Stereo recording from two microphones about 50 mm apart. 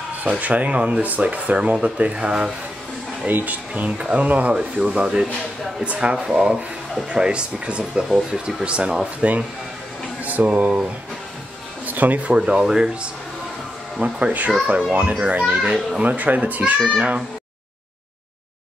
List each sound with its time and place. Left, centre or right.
0.3 s speech: right
3.3 s speech: right
4.6 s speech: centre
6.1 s speech: centre
14.0 s speech: right